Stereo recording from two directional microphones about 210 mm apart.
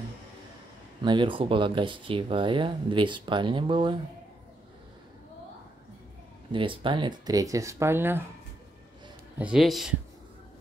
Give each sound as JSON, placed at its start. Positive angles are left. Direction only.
{"t": 1.0, "sound": "speech", "side_deg": -25}
{"t": 6.5, "sound": "speech", "side_deg": -25}
{"t": 9.4, "sound": "speech", "side_deg": 0}